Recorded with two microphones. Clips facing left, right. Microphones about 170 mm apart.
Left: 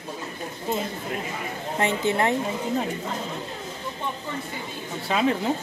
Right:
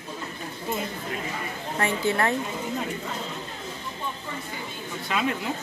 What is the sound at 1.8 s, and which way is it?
Speech, 20° left (ahead or behind).